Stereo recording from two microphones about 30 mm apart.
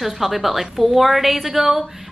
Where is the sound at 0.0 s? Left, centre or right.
Centre.